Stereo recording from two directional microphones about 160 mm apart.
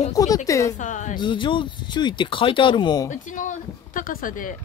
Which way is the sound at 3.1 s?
55° left (ahead or behind).